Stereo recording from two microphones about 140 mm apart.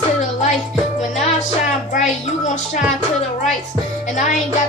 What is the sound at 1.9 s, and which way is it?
Speech, 60° left (ahead or behind).